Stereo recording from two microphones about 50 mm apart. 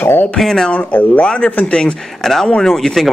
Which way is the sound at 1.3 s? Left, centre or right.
Centre.